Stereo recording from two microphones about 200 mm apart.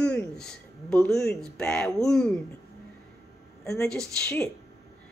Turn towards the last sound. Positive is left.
turn(degrees=5)  # may be behind; listen again after turning